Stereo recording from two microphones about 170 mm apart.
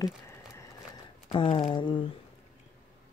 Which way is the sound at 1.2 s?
30° left (ahead or behind).